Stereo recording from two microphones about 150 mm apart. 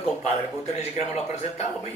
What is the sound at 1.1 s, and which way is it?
Speech, 45° left (ahead or behind).